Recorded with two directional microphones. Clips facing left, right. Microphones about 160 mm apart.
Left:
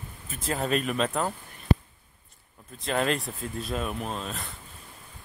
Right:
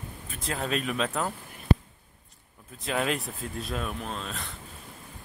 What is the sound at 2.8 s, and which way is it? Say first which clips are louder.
Speech: left 2 dB; 5° right (ahead or behind).